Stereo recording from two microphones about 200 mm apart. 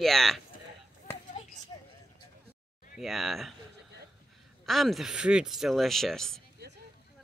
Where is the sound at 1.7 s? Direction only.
20° left (ahead or behind).